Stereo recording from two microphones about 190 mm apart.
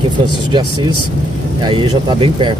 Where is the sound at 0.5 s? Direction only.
20° right (ahead or behind).